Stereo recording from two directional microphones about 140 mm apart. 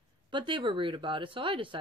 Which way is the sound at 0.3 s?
35° right (ahead or behind).